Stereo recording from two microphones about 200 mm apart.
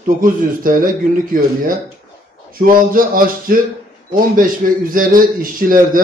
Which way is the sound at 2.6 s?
45° right (ahead or behind).